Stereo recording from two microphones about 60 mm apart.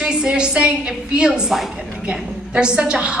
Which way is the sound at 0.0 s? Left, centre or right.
Centre.